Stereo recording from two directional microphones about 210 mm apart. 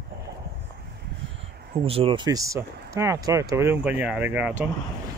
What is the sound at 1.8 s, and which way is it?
Speech, 25° right (ahead or behind).